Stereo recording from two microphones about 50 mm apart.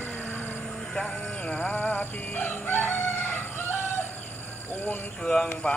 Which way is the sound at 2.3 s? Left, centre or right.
Left.